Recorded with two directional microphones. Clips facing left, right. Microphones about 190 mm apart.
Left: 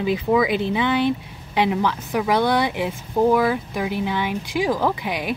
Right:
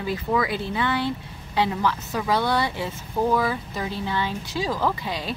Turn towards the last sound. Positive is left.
turn(degrees=15)  # may be behind; listen again after turning